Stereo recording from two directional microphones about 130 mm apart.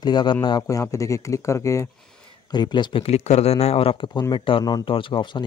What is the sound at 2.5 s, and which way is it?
Speech, 35° left (ahead or behind).